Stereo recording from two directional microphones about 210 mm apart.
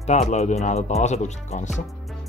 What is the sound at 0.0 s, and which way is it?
Speech, 35° left (ahead or behind).